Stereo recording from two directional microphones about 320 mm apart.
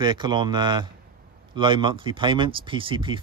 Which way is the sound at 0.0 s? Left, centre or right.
Centre.